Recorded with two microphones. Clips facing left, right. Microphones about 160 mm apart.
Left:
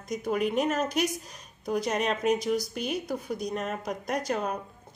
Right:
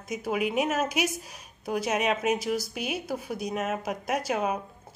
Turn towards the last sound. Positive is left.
turn(degrees=-5)  # may be behind; listen again after turning